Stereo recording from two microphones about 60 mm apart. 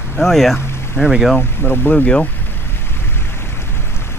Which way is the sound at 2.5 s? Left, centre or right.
Left.